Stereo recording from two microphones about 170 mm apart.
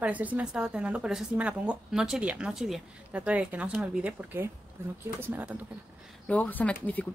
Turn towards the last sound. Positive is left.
turn(degrees=10)  # may be behind; listen again after turning